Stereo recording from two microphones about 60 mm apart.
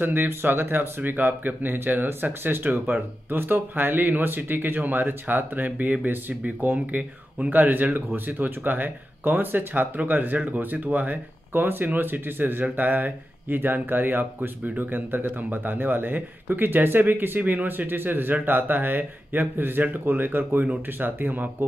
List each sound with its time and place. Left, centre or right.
0.0 s a man's voice: right